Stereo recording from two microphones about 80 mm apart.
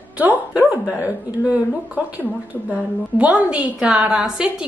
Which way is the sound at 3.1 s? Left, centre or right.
Centre.